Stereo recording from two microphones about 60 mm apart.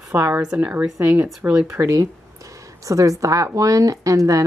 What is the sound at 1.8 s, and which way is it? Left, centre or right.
Speech, right.